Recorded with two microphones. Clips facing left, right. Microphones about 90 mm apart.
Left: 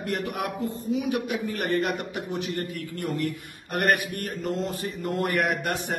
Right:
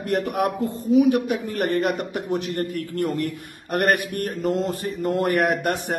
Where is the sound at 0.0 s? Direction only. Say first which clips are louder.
Right 7 dB; 55° right (ahead or behind).